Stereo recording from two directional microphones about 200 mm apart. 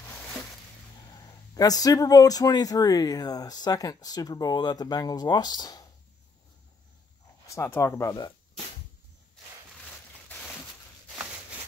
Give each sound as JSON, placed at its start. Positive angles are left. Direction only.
{"t": 1.5, "sound": "speech", "side_deg": 20}
{"t": 7.4, "sound": "speech", "side_deg": 15}